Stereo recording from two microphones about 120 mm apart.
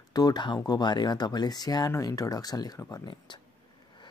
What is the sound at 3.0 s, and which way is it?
Speech, 40° left (ahead or behind).